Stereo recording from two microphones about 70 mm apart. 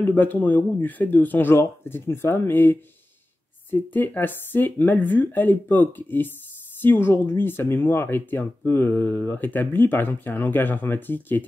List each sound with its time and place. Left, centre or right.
0.0 s speech: left